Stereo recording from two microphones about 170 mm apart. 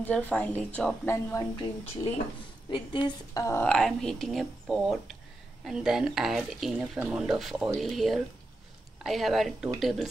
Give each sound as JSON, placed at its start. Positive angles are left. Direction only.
{"t": 0.0, "sound": "a woman's voice", "side_deg": 10}
{"t": 2.7, "sound": "a woman's voice", "side_deg": 30}
{"t": 3.4, "sound": "a woman's voice", "side_deg": 15}
{"t": 3.7, "sound": "speech", "side_deg": 5}